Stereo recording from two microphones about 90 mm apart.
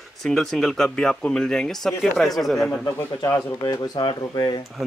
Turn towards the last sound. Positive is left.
turn(degrees=55)  # may be behind; listen again after turning